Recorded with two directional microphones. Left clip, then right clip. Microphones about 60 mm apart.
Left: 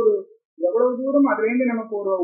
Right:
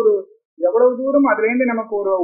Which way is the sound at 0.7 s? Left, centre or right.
Left.